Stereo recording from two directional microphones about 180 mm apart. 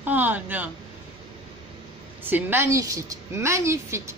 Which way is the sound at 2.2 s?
10° right (ahead or behind).